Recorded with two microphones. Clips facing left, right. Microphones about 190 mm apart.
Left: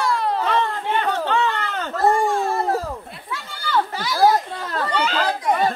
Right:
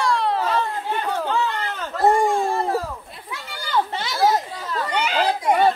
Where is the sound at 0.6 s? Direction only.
80° left.